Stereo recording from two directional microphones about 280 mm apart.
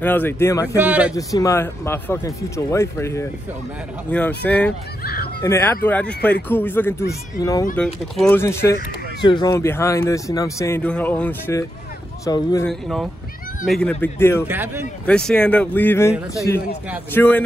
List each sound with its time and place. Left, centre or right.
0.0 s speech: centre
0.7 s speech: centre
1.1 s speech: centre
5.0 s speech: left
5.4 s speech: centre
12.6 s speech: centre
14.5 s a man's voice: centre
15.0 s speech: centre